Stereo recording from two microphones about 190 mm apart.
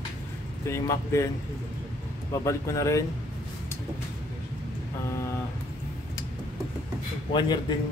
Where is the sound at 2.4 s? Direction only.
15° left (ahead or behind).